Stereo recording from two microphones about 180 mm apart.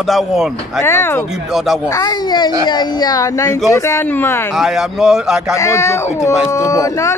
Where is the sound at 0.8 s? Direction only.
15° left (ahead or behind).